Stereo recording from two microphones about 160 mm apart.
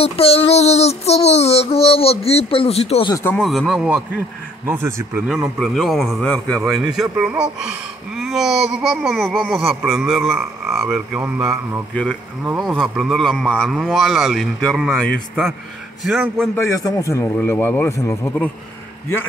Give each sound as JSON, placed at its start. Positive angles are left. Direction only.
{"t": 0.0, "sound": "child singing", "side_deg": 35}
{"t": 3.1, "sound": "speech", "side_deg": 20}
{"t": 3.3, "sound": "speech", "side_deg": 0}
{"t": 5.6, "sound": "speech", "side_deg": 0}
{"t": 11.9, "sound": "a man's voice", "side_deg": 5}
{"t": 16.5, "sound": "a man's voice", "side_deg": 20}